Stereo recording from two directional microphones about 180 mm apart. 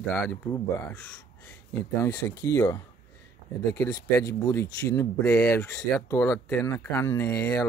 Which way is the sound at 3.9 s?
20° left (ahead or behind).